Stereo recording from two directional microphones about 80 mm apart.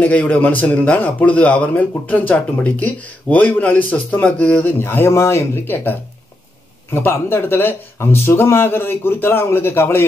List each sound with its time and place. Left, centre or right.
0.0 s speech: centre
4.7 s a man's voice: left